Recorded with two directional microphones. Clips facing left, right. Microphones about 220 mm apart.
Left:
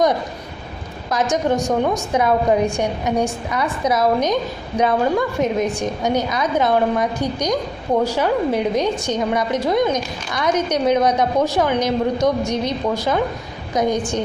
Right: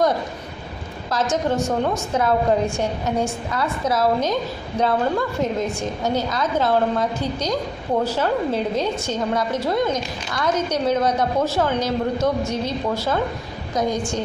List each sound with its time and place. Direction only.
1.1 s a woman's voice: 15° left (ahead or behind)